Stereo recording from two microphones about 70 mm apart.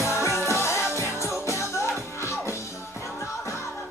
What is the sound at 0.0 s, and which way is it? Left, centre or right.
Music, left.